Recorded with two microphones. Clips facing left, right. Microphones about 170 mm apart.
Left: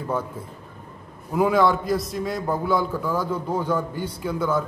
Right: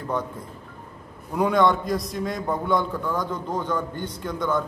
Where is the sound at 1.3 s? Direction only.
5° left (ahead or behind).